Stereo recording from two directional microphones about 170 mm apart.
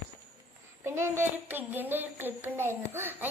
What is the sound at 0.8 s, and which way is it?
Child singing, 15° right (ahead or behind).